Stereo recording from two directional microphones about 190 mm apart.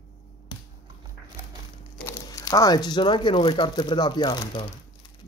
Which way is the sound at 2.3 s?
20° left (ahead or behind).